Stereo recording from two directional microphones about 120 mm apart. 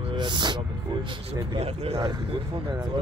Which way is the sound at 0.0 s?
40° right (ahead or behind).